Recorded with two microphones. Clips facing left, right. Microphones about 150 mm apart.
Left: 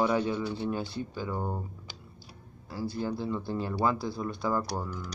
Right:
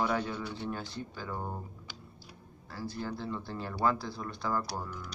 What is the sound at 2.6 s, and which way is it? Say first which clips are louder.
Speech: left 5 dB; 10° left (ahead or behind).